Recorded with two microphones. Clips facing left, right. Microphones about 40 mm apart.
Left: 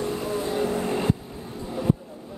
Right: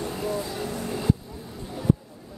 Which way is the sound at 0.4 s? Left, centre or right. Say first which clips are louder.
Left 6 dB; left.